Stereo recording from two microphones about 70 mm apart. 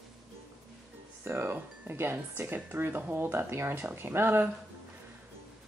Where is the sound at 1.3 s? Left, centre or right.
Right.